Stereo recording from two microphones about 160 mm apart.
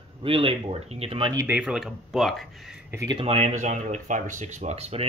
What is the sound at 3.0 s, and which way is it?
Speech, 35° right (ahead or behind).